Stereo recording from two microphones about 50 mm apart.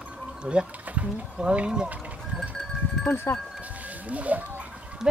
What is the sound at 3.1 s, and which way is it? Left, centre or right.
Speech, left.